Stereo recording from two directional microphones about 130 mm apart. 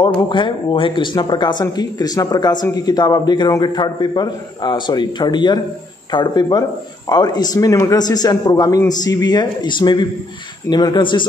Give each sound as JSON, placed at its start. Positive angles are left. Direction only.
{"t": 0.0, "sound": "speech", "side_deg": 35}